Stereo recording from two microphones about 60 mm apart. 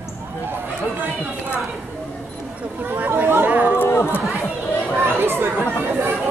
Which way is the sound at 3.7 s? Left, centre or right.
Left.